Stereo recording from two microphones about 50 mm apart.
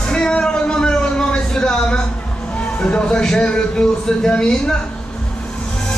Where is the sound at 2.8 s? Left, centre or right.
Centre.